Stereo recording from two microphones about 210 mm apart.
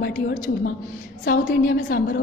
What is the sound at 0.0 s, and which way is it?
A woman's voice, 40° left (ahead or behind).